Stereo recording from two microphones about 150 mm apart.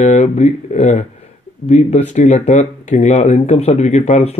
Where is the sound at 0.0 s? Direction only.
50° left (ahead or behind).